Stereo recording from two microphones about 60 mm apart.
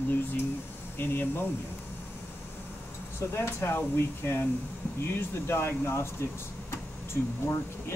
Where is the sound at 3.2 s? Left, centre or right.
Left.